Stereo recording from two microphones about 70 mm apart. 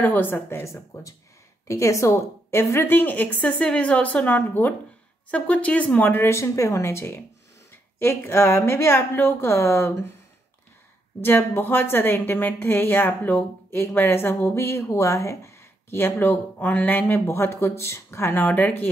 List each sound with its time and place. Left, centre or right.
0.0 s a woman's voice: left
1.7 s a woman's voice: left
11.2 s a woman's voice: left